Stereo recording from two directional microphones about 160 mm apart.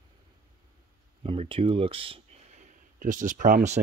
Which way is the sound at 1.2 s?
35° right (ahead or behind).